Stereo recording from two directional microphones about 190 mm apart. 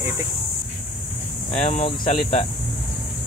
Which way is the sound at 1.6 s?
40° left (ahead or behind).